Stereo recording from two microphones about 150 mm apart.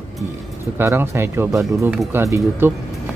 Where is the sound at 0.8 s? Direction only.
15° right (ahead or behind).